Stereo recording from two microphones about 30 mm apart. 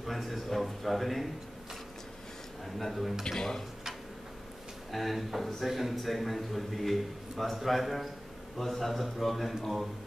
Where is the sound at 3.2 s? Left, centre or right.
Left.